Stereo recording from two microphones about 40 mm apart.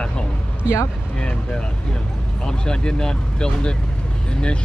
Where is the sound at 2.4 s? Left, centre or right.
Centre.